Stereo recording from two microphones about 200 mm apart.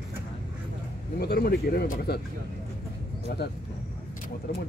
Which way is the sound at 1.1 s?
50° left (ahead or behind).